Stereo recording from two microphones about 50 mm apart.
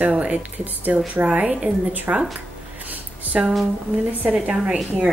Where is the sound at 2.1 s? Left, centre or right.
Right.